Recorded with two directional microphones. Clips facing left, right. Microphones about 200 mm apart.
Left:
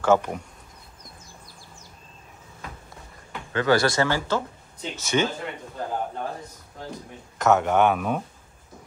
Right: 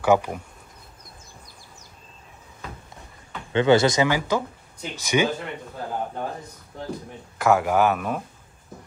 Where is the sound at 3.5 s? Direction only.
25° right (ahead or behind).